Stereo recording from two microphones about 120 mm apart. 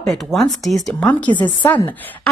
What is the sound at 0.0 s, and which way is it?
Speech, 5° left (ahead or behind).